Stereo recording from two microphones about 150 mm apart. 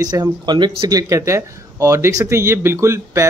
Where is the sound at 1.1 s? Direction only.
20° right (ahead or behind).